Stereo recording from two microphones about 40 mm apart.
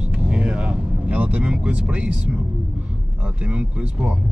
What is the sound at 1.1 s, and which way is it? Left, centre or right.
Vehicle, right.